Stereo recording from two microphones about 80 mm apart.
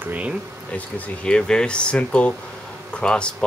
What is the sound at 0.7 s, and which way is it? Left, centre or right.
Speech, centre.